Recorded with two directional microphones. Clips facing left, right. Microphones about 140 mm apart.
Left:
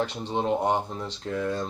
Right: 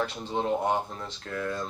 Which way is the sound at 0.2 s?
20° left (ahead or behind).